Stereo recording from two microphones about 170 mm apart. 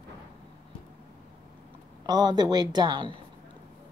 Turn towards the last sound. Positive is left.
turn(degrees=-30)  # may be behind; listen again after turning